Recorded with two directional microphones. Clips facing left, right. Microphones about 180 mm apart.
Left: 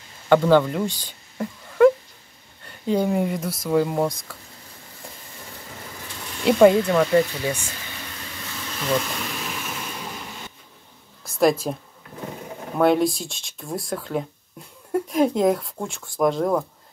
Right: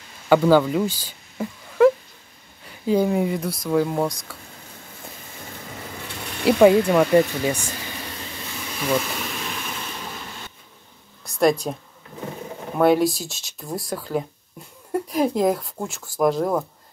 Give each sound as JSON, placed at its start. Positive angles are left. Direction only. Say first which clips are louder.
{"t": 0.3, "sound": "speech", "louder": "right 1 dB", "side_deg": -5}
{"t": 6.4, "sound": "speech", "louder": "even", "side_deg": -5}
{"t": 8.6, "sound": "vehicle", "louder": "right 1 dB", "side_deg": -10}
{"t": 11.2, "sound": "speech", "louder": "even", "side_deg": 0}
{"t": 12.7, "sound": "speech", "louder": "right 1 dB", "side_deg": 0}